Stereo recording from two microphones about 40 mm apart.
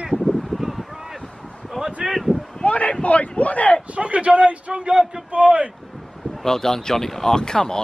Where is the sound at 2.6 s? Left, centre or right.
Left.